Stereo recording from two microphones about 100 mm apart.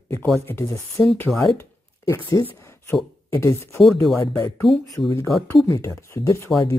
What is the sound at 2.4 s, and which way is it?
Speech, 25° left (ahead or behind).